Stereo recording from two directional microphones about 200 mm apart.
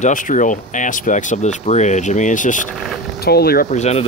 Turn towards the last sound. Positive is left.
turn(degrees=35)  # may be behind; listen again after turning